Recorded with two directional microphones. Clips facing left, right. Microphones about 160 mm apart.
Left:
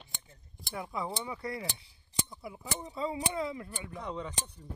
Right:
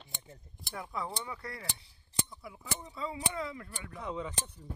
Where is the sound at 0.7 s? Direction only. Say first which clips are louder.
Left 2 dB; 10° left (ahead or behind).